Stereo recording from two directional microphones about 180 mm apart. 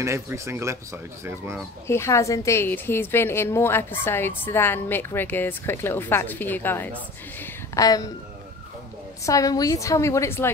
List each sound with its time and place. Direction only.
0.0 s speech: 15° right (ahead or behind)
1.9 s a woman's voice: 15° left (ahead or behind)
9.2 s a woman's voice: 20° left (ahead or behind)